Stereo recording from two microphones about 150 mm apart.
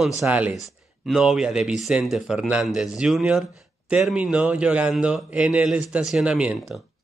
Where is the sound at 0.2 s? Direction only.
10° right (ahead or behind).